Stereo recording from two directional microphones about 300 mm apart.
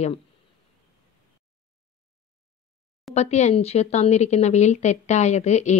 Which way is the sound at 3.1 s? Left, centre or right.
Left.